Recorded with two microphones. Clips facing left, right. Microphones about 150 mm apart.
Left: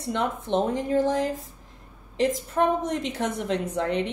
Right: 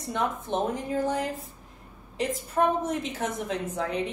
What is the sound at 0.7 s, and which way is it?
Speech, 90° left.